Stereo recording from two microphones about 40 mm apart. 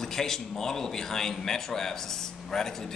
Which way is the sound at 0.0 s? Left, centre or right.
Centre.